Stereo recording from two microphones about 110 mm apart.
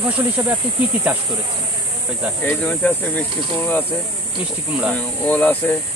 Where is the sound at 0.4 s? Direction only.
20° right (ahead or behind).